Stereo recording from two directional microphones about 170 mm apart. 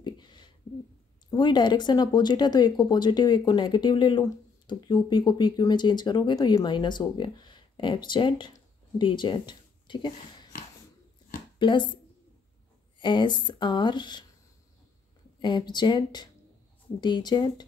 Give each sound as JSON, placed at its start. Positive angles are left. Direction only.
{"t": 0.0, "sound": "a sound", "side_deg": 25}
{"t": 1.3, "sound": "speech", "side_deg": 25}
{"t": 11.5, "sound": "a woman's voice", "side_deg": 25}
{"t": 13.0, "sound": "speech", "side_deg": 30}
{"t": 15.4, "sound": "speech", "side_deg": 25}